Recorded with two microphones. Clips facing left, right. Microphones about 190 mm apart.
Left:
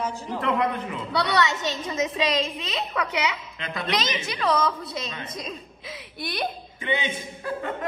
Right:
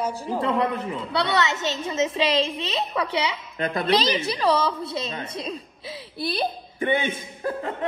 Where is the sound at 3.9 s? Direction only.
35° right (ahead or behind).